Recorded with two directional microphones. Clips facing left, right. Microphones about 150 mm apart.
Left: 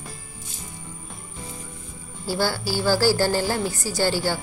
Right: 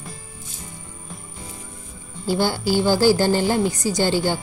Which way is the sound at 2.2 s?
20° right (ahead or behind).